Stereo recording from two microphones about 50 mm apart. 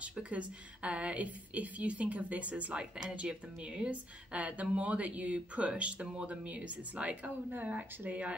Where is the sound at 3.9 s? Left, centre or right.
Right.